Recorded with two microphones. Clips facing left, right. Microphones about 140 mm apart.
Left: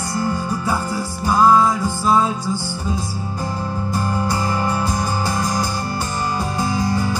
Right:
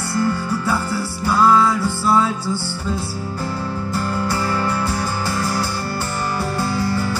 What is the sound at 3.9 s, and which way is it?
Music, 15° left (ahead or behind).